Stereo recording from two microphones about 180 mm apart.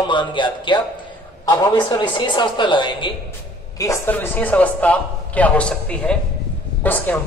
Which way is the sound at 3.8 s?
15° left (ahead or behind).